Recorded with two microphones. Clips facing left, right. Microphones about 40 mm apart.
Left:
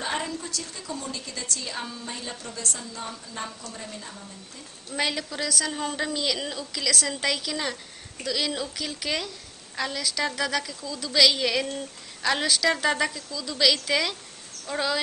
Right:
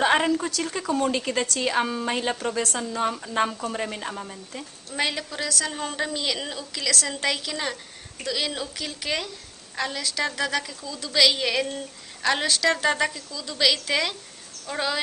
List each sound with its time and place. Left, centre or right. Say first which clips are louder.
0.0 s a sound: right 9 dB; right
0.6 s speech: right 10 dB; right
2.6 s speech: right 6 dB; right
4.9 s a woman's voice: right 1 dB; centre